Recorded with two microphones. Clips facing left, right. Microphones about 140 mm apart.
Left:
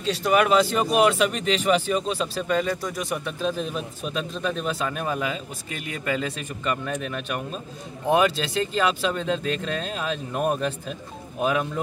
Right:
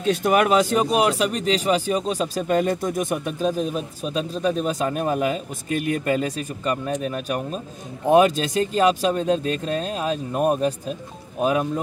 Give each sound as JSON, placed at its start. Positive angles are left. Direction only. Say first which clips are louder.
{"t": 0.0, "sound": "a man's voice", "louder": "right 2 dB", "side_deg": -50}